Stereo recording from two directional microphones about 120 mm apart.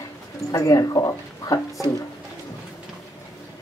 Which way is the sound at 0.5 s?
30° left (ahead or behind).